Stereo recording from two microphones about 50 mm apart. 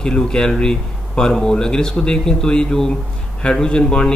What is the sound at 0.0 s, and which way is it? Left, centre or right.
A man's voice, centre.